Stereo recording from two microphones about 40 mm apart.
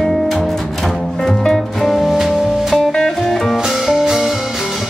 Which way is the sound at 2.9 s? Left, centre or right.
Centre.